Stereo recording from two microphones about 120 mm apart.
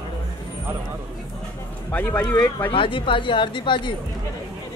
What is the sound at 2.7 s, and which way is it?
Speech, 45° left (ahead or behind).